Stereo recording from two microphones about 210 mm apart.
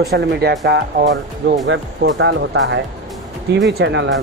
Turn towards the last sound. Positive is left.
turn(degrees=-55)  # may be behind; listen again after turning